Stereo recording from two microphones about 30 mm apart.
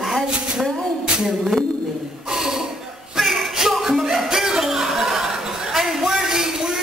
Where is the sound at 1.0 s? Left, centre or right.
Right.